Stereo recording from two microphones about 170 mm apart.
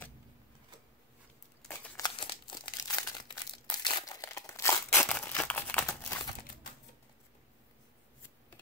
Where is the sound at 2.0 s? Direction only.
30° left (ahead or behind); by 6.2 s 15° left (ahead or behind).